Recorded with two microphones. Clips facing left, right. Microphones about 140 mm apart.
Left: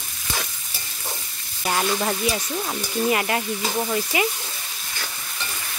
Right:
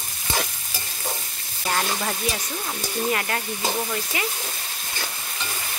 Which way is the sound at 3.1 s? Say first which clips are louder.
Left 4 dB; 10° left (ahead or behind).